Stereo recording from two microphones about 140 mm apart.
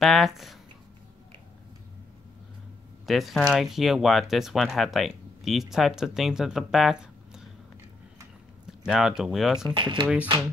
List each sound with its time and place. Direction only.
0.0 s speech: centre (ahead or behind)
3.1 s speech: centre (ahead or behind)
8.8 s speech: 5° right (ahead or behind)
9.8 s speech: 35° right (ahead or behind)